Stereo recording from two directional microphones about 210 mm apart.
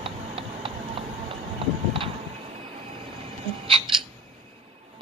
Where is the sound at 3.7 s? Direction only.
25° right (ahead or behind).